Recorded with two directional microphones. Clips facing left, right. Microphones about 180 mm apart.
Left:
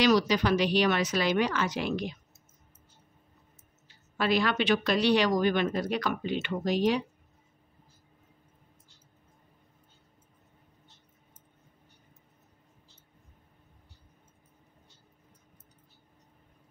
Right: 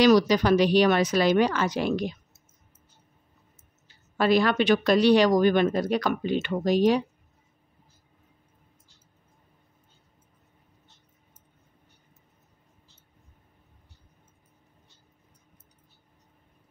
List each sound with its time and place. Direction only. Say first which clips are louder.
0.0 s speech: right 5 dB; 40° right (ahead or behind)
4.2 s speech: right 5 dB; 40° right (ahead or behind)